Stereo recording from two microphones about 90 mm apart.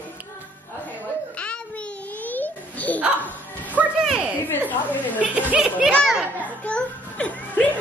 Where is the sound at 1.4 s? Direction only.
15° left (ahead or behind).